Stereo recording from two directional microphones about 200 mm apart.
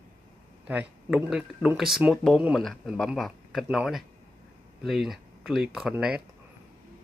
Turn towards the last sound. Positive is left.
turn(degrees=-5)  # may be behind; listen again after turning